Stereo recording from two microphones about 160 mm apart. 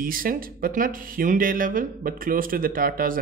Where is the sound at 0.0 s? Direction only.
65° right (ahead or behind).